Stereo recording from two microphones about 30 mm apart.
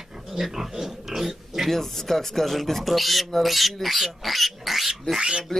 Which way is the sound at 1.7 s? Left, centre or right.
Centre.